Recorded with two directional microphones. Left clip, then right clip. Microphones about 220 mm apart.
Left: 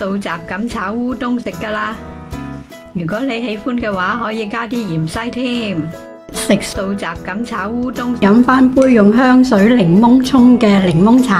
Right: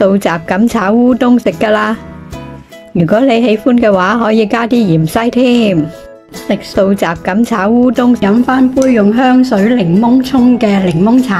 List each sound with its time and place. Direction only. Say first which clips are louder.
0.0 s a woman's voice: right 10 dB; 30° right (ahead or behind)
3.0 s a woman's voice: right 11 dB; 30° right (ahead or behind)
6.4 s speech: even; centre (ahead or behind)
6.8 s a woman's voice: right 10 dB; 30° right (ahead or behind)
8.2 s a woman's voice: even; centre (ahead or behind)